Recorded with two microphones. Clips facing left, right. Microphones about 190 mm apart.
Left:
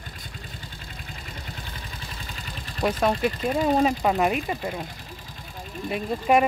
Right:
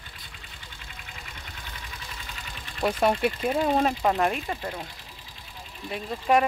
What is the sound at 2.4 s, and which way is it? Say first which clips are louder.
Vehicle: left 3 dB; 35° left (ahead or behind).